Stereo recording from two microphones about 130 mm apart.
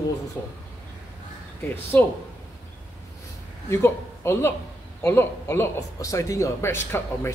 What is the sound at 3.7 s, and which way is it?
Speech, 20° left (ahead or behind).